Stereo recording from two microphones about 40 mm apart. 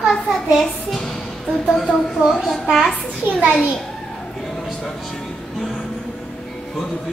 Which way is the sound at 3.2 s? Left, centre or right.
Right.